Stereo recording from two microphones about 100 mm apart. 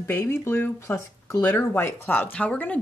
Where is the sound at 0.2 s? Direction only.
25° left (ahead or behind).